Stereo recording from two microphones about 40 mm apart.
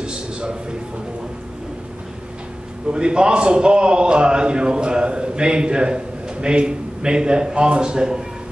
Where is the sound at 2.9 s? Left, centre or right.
Right.